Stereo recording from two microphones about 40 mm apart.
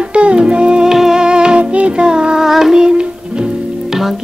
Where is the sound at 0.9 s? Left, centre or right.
Centre.